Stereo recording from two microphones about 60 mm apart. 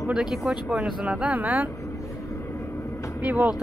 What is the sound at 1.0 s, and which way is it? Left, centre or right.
Speech, right.